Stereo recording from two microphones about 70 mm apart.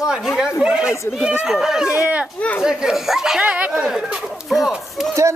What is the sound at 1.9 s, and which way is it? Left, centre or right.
Speech, centre.